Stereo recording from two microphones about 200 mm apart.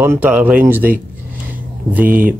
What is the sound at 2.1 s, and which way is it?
Speech, 45° right (ahead or behind).